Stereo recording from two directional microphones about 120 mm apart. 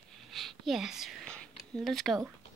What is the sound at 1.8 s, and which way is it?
Speech, centre (ahead or behind).